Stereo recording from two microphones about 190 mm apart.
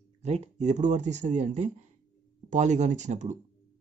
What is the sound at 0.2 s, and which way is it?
Speech, 35° right (ahead or behind).